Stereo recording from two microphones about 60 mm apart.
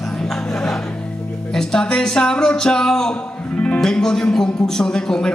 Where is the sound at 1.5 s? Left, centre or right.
Centre.